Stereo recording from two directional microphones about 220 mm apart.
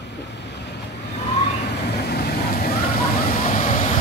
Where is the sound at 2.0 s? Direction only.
45° left (ahead or behind).